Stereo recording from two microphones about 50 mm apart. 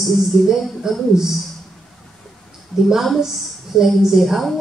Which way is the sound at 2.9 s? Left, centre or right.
Centre.